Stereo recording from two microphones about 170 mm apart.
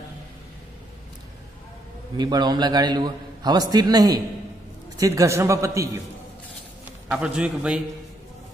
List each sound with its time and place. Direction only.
2.1 s a man's voice: 25° right (ahead or behind)
7.1 s a man's voice: 5° right (ahead or behind)